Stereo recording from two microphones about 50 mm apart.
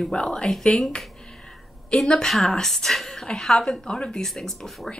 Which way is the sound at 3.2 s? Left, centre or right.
Centre.